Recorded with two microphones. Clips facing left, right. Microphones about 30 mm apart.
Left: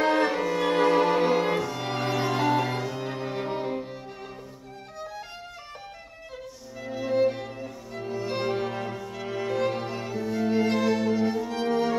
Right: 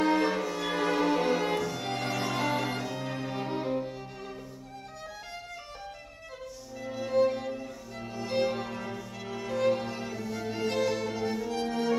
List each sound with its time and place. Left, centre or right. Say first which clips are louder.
0.0 s cello: left 3 dB; left
0.3 s cello: left 5 dB; centre
0.7 s music: left 5 dB; left; by 3.8 s centre
6.8 s music: left 2 dB; centre
8.5 s music: left 4 dB; left
11.6 s music: left 8 dB; left